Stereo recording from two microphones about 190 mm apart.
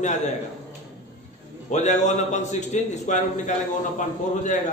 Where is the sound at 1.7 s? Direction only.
40° left (ahead or behind).